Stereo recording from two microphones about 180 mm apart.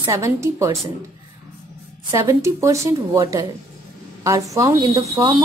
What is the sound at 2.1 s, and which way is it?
Speech, 15° right (ahead or behind).